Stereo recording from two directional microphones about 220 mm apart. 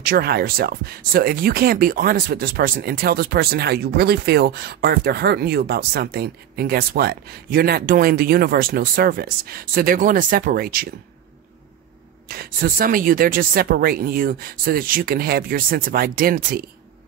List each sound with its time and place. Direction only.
0.0 s speech: 45° right (ahead or behind)
12.3 s speech: 40° right (ahead or behind)